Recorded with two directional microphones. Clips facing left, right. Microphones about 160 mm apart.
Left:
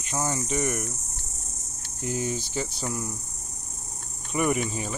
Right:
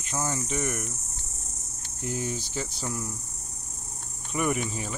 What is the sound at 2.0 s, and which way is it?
Speech, 15° left (ahead or behind).